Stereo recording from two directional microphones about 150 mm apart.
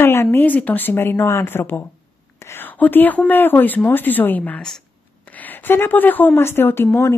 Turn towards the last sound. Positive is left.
turn(degrees=15)  # may be behind; listen again after turning